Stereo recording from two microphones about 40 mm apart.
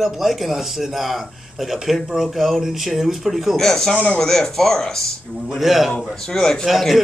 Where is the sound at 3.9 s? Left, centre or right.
Left.